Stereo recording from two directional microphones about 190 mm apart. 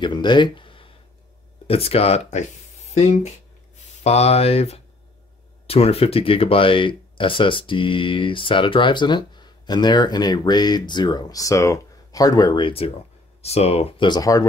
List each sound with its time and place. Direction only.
0.0 s speech: 25° left (ahead or behind)
4.0 s speech: 35° left (ahead or behind)